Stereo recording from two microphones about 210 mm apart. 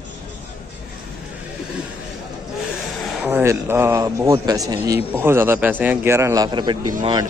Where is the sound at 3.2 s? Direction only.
10° right (ahead or behind).